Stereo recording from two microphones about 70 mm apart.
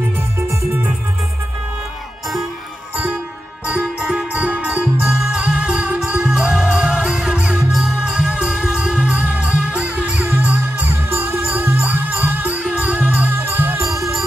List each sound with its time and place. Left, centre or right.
0.4 s music: right
3.7 s music: centre